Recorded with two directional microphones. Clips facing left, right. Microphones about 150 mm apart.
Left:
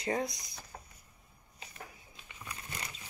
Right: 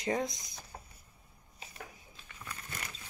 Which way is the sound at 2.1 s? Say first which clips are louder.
Even; 15° left (ahead or behind).